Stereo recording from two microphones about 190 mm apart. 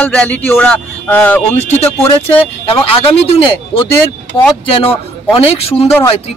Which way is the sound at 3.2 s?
30° left (ahead or behind).